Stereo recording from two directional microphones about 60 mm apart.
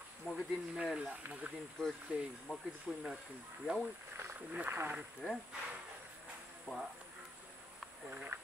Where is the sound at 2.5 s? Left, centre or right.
Left.